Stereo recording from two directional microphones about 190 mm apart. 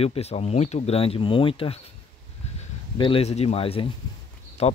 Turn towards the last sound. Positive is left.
turn(degrees=35)  # may be behind; listen again after turning